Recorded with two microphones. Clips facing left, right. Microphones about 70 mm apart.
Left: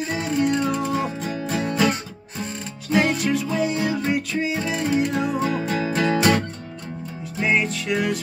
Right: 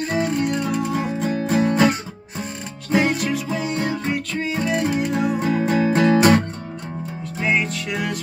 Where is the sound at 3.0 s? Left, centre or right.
Centre.